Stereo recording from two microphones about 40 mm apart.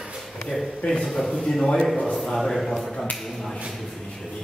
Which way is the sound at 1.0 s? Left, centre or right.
Centre.